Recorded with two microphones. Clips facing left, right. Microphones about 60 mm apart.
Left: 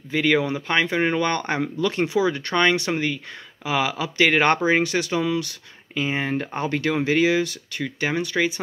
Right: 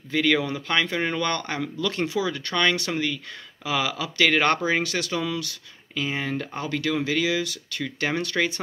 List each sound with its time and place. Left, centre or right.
0.1 s speech: centre; by 7.6 s left
7.7 s speech: centre